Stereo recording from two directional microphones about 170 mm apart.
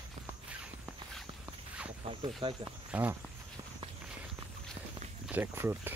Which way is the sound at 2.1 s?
30° right (ahead or behind).